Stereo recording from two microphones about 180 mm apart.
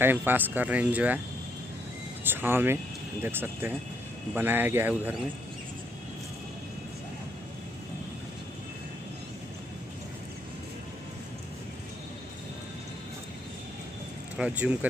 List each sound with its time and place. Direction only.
0.0 s speech: 10° right (ahead or behind)
2.2 s speech: 10° right (ahead or behind)
14.3 s speech: 5° right (ahead or behind)